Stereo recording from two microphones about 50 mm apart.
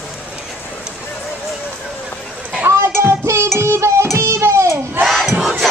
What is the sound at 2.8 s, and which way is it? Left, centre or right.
Music, right.